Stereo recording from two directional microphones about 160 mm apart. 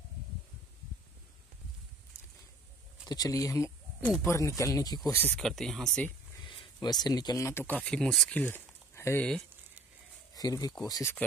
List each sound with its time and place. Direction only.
2.1 s a sound: 15° left (ahead or behind)
3.1 s speech: 20° left (ahead or behind)
5.3 s speech: centre (ahead or behind)
6.4 s speech: 30° left (ahead or behind); by 9.2 s 15° left (ahead or behind)
10.3 s speech: 25° left (ahead or behind)